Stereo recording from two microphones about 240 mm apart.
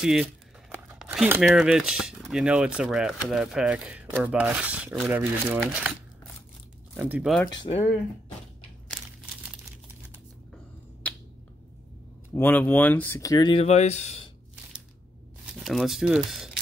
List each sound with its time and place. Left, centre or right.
0.0 s speech: centre
7.0 s speech: centre
7.4 s speech: centre
10.5 s finger snapping: centre
12.4 s speech: centre; by 14.3 s left
15.6 s speech: centre